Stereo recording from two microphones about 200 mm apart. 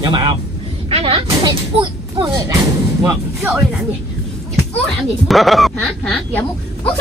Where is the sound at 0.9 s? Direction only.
30° right (ahead or behind).